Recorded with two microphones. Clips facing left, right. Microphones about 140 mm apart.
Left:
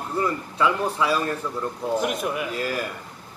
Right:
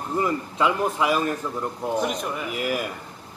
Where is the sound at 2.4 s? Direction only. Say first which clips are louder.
Right 1 dB; 15° right (ahead or behind).